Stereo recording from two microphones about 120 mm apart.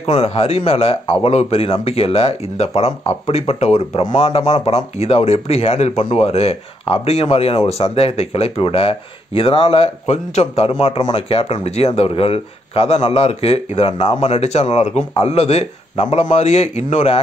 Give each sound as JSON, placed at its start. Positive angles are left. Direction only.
{"t": 0.0, "sound": "a man's voice", "side_deg": 60}
{"t": 11.1, "sound": "a man's voice", "side_deg": 55}